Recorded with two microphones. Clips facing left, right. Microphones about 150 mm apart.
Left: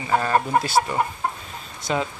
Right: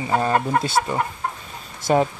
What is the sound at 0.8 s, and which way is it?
Chicken, 15° left (ahead or behind).